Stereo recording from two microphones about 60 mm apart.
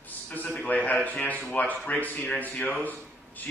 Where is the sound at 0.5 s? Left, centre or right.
Left.